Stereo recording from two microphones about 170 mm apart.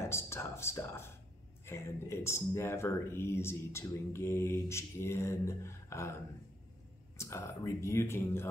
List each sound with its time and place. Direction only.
0.0 s speech: 15° left (ahead or behind)
7.2 s speech: 15° left (ahead or behind)